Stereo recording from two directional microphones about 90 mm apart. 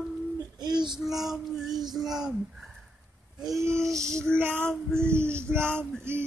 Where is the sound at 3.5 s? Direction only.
30° right (ahead or behind).